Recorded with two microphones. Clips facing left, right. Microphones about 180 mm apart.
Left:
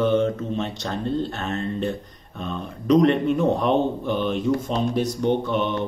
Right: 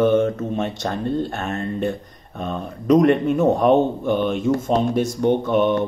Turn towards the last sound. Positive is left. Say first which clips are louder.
# right 5 dB
turn(degrees=-50)  # may be behind; listen again after turning